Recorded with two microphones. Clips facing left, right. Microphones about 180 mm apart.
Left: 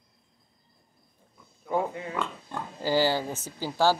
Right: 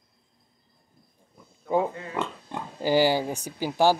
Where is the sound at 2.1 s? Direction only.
15° right (ahead or behind).